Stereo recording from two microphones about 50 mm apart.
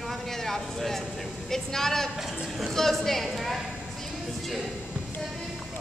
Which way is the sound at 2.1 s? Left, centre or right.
Centre.